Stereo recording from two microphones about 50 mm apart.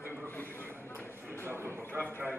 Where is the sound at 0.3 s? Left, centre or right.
Left.